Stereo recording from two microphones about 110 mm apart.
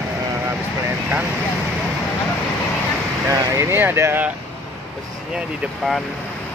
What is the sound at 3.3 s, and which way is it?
Speech, 25° right (ahead or behind).